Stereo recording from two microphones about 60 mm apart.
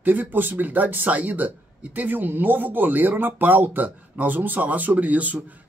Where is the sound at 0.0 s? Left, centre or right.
Right.